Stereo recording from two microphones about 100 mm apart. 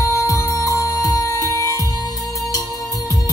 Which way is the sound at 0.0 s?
35° left (ahead or behind).